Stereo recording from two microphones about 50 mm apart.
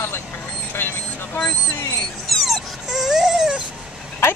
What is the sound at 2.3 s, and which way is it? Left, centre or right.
Dog, centre.